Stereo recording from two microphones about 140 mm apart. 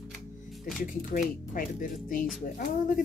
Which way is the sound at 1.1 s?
75° left (ahead or behind).